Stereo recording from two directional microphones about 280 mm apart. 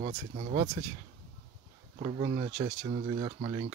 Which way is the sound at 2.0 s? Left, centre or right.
Centre.